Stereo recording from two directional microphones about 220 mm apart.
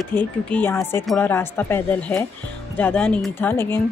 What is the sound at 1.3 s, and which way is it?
A woman's voice, 10° left (ahead or behind).